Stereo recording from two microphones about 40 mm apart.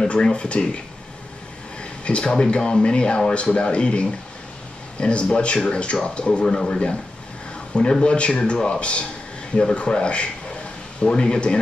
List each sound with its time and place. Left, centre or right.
0.0 s speech: left
1.8 s speech: left